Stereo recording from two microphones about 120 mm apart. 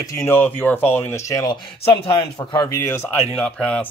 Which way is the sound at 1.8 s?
40° left (ahead or behind).